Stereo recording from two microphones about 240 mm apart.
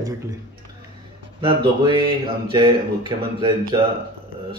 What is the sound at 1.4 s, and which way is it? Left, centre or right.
Speech, right.